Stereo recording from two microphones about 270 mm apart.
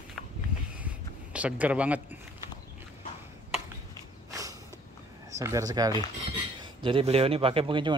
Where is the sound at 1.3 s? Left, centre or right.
Centre.